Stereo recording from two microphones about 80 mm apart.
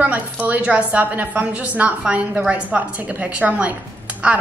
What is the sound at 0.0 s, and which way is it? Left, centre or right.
A woman's voice, centre.